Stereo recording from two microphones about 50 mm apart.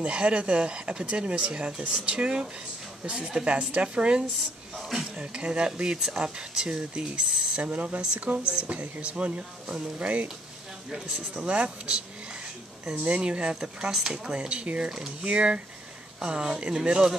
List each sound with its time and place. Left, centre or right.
0.0 s speech: right
4.4 s speech: centre
5.1 s speech: centre
7.6 s speech: right
10.9 s speech: centre
11.4 s speech: right